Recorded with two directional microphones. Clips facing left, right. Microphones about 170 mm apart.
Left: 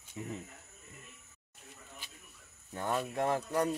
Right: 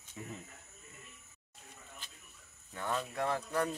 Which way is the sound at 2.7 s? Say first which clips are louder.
Left 3 dB; 40° left (ahead or behind).